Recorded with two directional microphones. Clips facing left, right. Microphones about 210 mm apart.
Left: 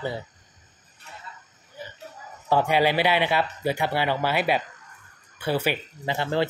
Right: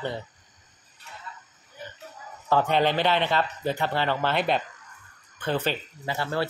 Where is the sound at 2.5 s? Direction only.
10° left (ahead or behind).